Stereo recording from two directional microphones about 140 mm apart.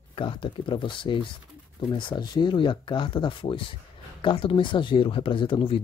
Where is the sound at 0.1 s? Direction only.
40° left (ahead or behind).